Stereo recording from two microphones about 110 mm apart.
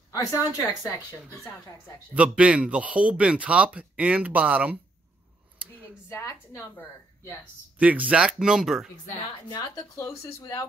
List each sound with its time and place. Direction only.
0.1 s speech: 35° left (ahead or behind)
2.1 s a man's voice: 10° right (ahead or behind)
6.0 s a woman's voice: 25° left (ahead or behind)
7.8 s a man's voice: 15° right (ahead or behind)
9.5 s speech: 30° left (ahead or behind)